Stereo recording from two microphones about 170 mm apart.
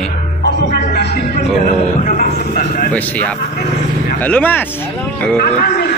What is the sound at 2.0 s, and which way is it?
Speech, 55° left (ahead or behind).